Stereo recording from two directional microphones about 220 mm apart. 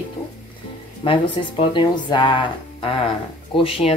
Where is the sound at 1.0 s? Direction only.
25° left (ahead or behind).